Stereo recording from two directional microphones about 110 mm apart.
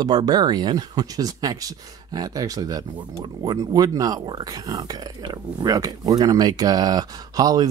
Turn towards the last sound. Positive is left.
turn(degrees=-35)  # may be behind; listen again after turning